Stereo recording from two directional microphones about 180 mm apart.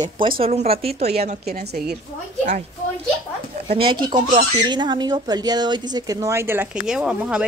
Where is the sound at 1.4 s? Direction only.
60° right (ahead or behind).